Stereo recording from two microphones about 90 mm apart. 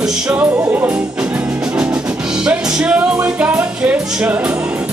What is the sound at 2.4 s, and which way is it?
Music, 10° right (ahead or behind).